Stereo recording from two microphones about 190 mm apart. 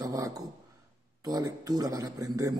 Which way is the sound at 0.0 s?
15° right (ahead or behind).